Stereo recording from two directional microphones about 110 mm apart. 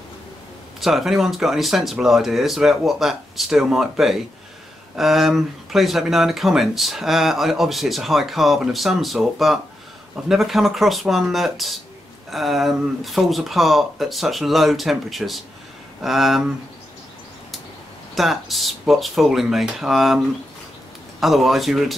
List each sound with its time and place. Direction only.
0.7 s speech: centre (ahead or behind)
18.1 s speech: centre (ahead or behind)
21.2 s speech: centre (ahead or behind)